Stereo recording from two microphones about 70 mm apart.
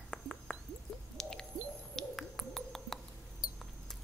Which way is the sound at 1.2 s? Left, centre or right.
Centre.